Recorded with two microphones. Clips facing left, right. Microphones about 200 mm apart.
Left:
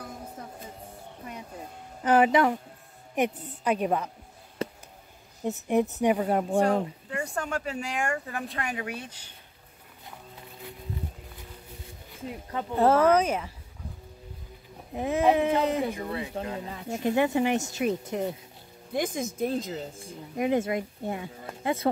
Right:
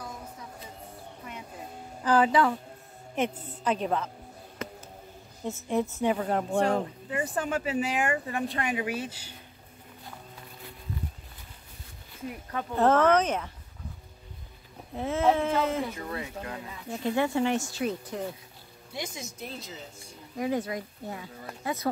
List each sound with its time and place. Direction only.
0.0 s music: 50° left (ahead or behind)
2.0 s speech: 20° left (ahead or behind)
4.6 s a sound: 35° left (ahead or behind)
5.7 s a woman's voice: 15° left (ahead or behind); by 9.3 s 5° right (ahead or behind)
12.4 s speech: 20° left (ahead or behind)
12.8 s speech: 10° left (ahead or behind)
15.0 s speech: 15° left (ahead or behind)
16.2 s speech: 30° left (ahead or behind)
18.9 s speech: 50° left (ahead or behind)
20.3 s speech: 20° left (ahead or behind)